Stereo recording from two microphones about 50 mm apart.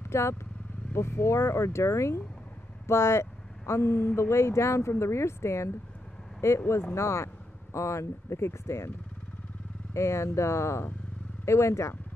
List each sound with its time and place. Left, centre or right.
0.1 s speech: left
9.9 s speech: left